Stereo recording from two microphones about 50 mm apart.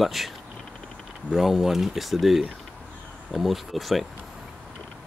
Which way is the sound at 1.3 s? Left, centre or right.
Centre.